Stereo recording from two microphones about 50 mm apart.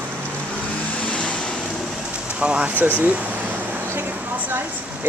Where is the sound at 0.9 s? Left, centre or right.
Left.